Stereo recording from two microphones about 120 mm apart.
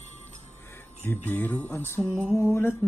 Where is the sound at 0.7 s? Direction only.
20° left (ahead or behind).